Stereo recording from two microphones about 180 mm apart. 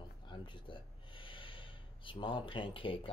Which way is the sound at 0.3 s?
25° left (ahead or behind).